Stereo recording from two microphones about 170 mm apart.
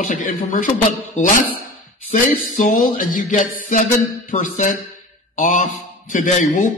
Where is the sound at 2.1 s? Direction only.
55° left (ahead or behind).